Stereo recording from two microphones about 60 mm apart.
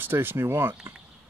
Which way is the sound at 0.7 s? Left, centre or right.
Right.